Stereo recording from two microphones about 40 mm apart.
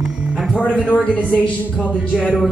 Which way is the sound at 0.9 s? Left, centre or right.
Left.